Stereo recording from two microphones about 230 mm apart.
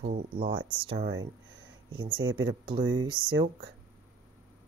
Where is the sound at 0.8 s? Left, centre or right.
Right.